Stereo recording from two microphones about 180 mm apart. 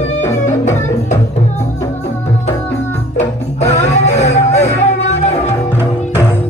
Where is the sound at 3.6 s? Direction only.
40° left (ahead or behind).